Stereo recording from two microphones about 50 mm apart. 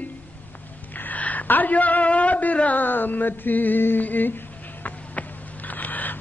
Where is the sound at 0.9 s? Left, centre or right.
Left.